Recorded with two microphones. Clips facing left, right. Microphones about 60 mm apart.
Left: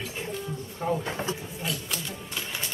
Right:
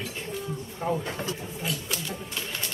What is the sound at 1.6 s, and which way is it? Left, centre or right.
Speech, centre.